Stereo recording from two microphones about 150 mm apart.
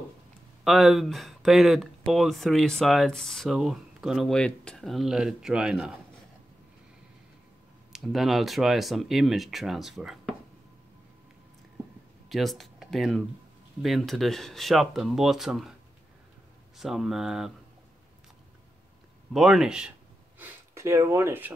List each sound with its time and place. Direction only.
0.7 s speech: centre (ahead or behind)
7.9 s speech: centre (ahead or behind)
12.3 s speech: centre (ahead or behind)
16.7 s speech: centre (ahead or behind)
19.3 s speech: centre (ahead or behind)
20.3 s speech: 15° right (ahead or behind)